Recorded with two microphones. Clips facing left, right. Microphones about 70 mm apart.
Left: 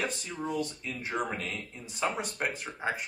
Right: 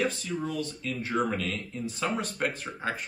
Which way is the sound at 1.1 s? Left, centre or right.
Centre.